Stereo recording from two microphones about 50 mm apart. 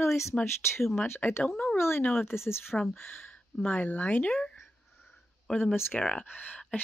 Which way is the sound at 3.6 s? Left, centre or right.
Left.